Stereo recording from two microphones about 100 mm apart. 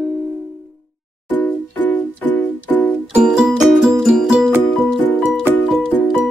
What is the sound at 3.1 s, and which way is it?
Music, 10° right (ahead or behind).